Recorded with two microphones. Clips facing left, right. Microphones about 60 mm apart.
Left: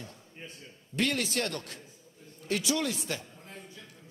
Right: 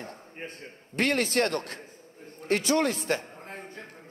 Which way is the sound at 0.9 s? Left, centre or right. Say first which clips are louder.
Right 5 dB; right.